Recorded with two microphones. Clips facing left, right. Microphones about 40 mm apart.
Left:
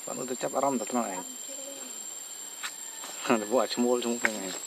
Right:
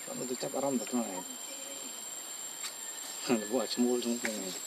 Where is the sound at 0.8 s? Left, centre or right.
Left.